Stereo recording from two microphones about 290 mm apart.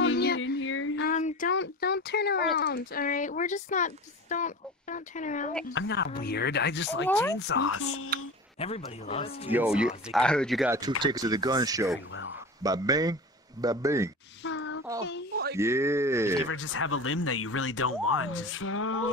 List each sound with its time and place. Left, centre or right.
0.0 s a sound: left
1.0 s a sound: left
1.5 s speech: left
5.7 s speech: left
7.1 s speech: centre
7.3 s speech: left
7.7 s speech: left
8.5 s speech: left
9.5 s speech: centre
14.4 s a sound: left
15.5 s speech: centre
16.4 s speech: left